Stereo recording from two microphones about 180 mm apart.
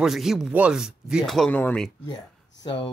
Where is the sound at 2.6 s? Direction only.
25° left (ahead or behind).